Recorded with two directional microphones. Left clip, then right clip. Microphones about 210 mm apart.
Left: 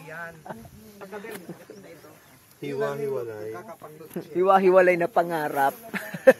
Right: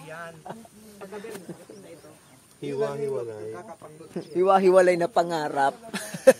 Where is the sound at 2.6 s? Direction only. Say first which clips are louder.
Even; 5° right (ahead or behind).